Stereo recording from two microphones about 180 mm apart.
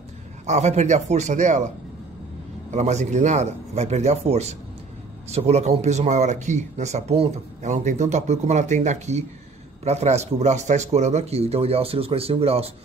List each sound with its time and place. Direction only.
0.5 s speech: 40° right (ahead or behind)
2.7 s speech: 40° right (ahead or behind)